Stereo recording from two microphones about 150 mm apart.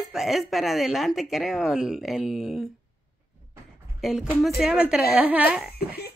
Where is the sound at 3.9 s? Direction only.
Centre (ahead or behind).